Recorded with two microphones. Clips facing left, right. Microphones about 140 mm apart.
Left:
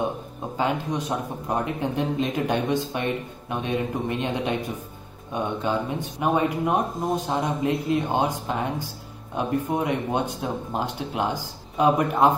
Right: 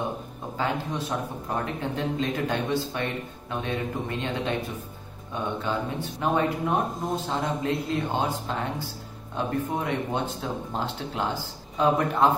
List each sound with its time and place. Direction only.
0.6 s speech: 20° left (ahead or behind)